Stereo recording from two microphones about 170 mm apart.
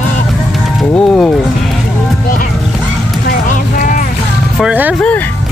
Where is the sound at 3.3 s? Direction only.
55° left (ahead or behind).